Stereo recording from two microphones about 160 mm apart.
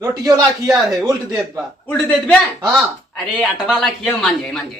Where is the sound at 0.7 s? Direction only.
5° right (ahead or behind).